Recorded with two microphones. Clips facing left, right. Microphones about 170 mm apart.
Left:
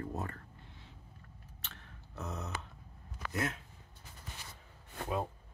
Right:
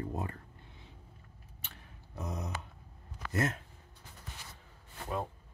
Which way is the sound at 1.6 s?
15° right (ahead or behind).